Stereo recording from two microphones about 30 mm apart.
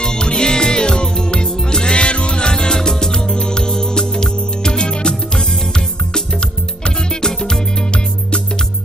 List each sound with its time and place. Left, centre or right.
0.0 s music: left
7.2 s music: left